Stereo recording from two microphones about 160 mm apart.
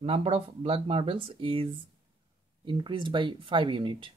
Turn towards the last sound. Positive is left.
turn(degrees=-30)  # may be behind; listen again after turning